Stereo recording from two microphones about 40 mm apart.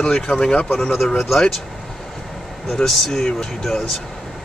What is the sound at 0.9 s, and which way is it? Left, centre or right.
Speech, centre.